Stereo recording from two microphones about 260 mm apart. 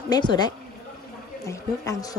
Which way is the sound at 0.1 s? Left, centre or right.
Centre.